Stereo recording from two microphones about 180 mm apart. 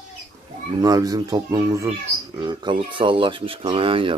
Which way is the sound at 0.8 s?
20° right (ahead or behind).